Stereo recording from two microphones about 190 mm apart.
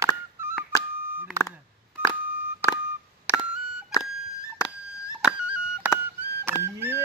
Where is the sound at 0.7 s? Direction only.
15° left (ahead or behind).